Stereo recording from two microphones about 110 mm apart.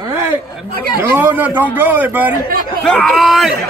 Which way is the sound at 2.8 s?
5° left (ahead or behind).